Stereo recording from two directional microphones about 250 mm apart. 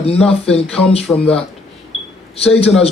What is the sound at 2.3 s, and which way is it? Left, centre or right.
Speech, left.